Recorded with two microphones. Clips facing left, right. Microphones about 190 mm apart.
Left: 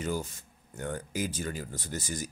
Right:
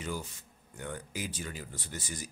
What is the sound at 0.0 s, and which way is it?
Speech, 45° left (ahead or behind).